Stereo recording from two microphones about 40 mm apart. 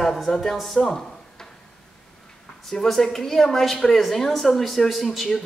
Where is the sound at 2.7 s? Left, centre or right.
Centre.